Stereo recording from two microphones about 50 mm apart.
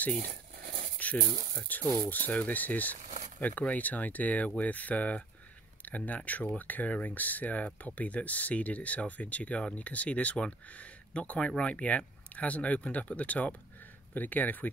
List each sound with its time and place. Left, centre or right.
0.9 s speech: left